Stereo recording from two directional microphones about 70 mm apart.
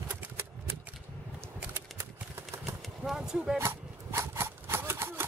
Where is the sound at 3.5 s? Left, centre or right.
Right.